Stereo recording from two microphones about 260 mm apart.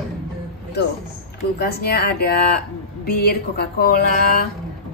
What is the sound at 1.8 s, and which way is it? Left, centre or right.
A woman's voice, left.